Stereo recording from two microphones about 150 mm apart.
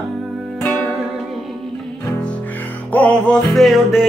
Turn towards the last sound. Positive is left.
turn(degrees=0)  # may be behind; listen again after turning